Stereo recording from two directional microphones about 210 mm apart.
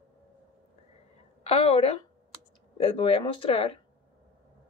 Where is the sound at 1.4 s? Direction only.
30° left (ahead or behind).